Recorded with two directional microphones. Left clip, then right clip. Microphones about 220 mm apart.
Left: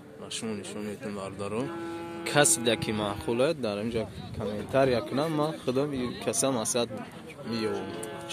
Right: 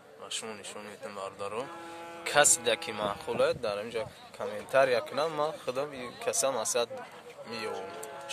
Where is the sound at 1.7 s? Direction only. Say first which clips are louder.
Left 6 dB; 50° left (ahead or behind).